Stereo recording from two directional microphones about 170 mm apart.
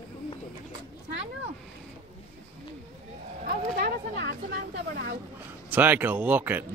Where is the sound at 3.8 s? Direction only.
85° right.